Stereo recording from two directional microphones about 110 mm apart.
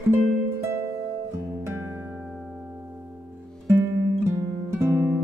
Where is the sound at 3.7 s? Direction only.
25° right (ahead or behind).